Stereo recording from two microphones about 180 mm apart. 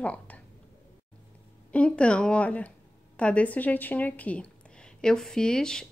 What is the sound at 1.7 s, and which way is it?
Speech, 5° left (ahead or behind).